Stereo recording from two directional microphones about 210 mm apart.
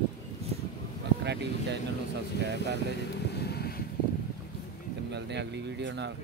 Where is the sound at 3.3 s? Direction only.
50° left (ahead or behind).